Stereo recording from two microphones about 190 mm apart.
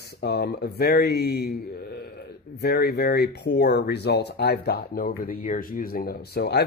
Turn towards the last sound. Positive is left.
turn(degrees=60)  # may be behind; listen again after turning